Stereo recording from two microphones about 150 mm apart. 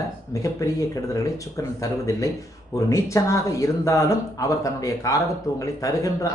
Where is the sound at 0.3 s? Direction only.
20° left (ahead or behind).